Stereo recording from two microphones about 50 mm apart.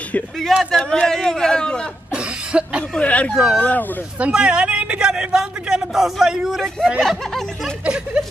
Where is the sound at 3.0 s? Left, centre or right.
Left.